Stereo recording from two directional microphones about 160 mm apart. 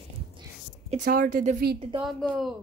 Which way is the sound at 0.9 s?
60° right (ahead or behind).